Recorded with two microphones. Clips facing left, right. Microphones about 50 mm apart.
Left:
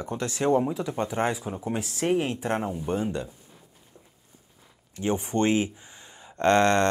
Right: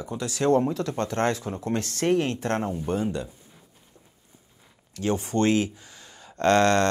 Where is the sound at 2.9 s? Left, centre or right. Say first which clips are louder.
Even; left.